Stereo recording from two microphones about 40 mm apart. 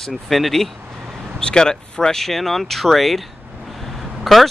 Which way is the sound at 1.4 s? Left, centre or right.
Centre.